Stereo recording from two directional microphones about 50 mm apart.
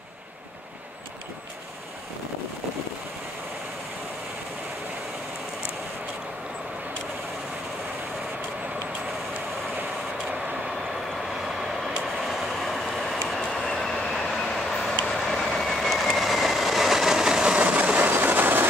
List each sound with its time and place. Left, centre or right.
11.4 s vehicle: centre
13.4 s train: centre
15.0 s vehicle: centre; by 18.1 s right
18.1 s train: right